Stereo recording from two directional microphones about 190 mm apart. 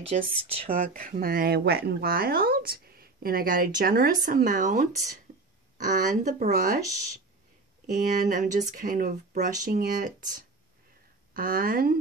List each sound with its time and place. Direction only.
0.0 s speech: 30° right (ahead or behind)
0.7 s speech: 50° right (ahead or behind)
7.8 s speech: 45° right (ahead or behind)
11.3 s speech: 50° right (ahead or behind)